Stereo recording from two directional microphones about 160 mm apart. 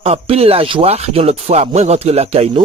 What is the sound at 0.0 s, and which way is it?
Speech, 40° right (ahead or behind).